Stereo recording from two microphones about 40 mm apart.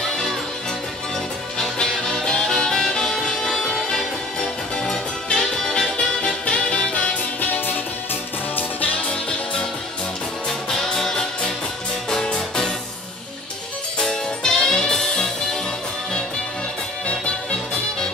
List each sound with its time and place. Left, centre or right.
1.6 s music: centre; by 7.2 s left
7.6 s music: left
8.8 s music: left
10.9 s music: centre
13.9 s music: centre